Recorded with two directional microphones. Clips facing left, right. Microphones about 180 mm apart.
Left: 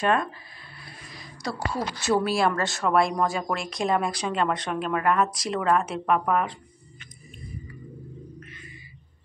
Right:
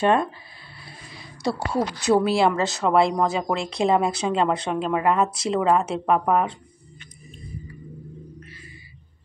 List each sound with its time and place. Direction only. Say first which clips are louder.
0.0 s speech: right 4 dB; 30° right (ahead or behind)